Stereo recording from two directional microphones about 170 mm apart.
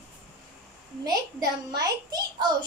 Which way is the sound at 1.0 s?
20° right (ahead or behind).